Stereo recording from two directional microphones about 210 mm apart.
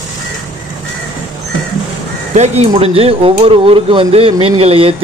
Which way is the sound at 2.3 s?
30° right (ahead or behind).